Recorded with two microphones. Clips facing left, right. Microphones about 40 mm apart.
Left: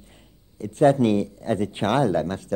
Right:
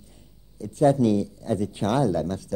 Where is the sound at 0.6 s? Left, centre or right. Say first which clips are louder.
Left 2 dB; left.